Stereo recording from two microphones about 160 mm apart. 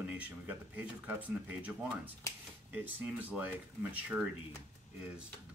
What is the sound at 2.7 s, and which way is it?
Speech, 10° right (ahead or behind).